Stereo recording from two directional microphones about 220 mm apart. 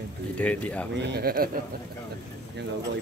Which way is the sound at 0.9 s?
50° right (ahead or behind).